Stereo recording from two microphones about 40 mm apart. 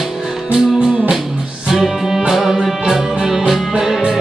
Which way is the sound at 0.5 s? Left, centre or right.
Right.